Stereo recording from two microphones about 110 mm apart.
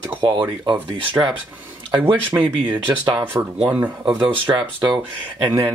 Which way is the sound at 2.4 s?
50° right (ahead or behind).